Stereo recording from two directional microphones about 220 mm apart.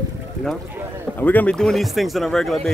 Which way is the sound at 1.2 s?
5° left (ahead or behind).